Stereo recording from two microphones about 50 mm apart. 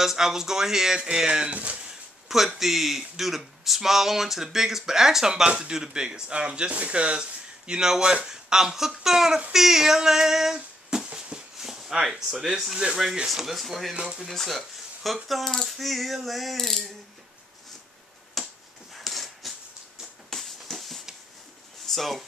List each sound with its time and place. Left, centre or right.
0.0 s speech: centre
1.5 s speech: right
2.2 s ratchet: centre
3.2 s speech: centre
9.5 s a sound: centre
12.9 s speech: centre
13.3 s ratchet: centre
13.9 s speech: centre
14.2 s ratchet: centre
18.4 s finger snapping: centre
18.9 s a sound: centre
20.2 s music: centre
21.8 s speech: centre